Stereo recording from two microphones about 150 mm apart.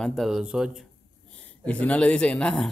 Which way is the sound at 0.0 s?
Centre (ahead or behind).